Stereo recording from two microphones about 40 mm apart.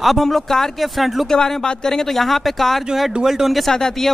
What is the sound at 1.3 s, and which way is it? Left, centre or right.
Speech, centre.